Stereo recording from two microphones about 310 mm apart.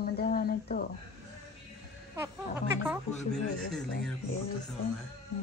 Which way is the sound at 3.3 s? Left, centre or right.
Centre.